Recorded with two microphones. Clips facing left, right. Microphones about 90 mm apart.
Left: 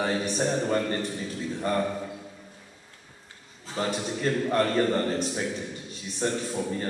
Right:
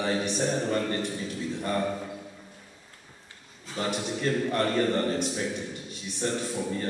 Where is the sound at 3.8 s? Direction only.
35° left (ahead or behind).